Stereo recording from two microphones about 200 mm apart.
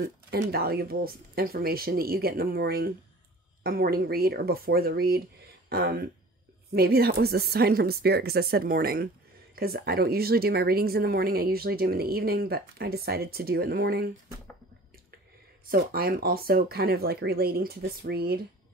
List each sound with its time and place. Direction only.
0.0 s speech: 50° right (ahead or behind)
15.7 s speech: 50° right (ahead or behind)